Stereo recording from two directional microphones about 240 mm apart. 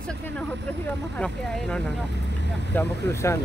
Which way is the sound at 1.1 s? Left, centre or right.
Centre.